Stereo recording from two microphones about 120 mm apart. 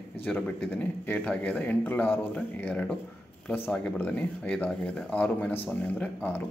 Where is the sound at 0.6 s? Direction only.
10° left (ahead or behind).